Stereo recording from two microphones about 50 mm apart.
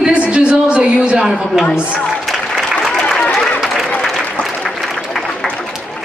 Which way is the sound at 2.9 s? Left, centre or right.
Centre.